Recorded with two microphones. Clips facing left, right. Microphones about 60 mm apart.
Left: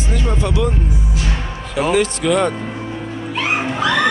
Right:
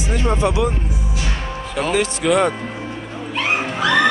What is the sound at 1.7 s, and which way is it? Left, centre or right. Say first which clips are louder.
Speech: left 3 dB; centre.